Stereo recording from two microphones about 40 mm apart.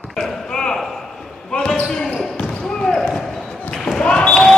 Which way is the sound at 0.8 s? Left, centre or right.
Centre.